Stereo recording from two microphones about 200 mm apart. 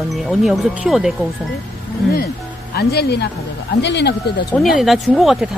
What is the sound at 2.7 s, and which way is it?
Speech, 50° left (ahead or behind).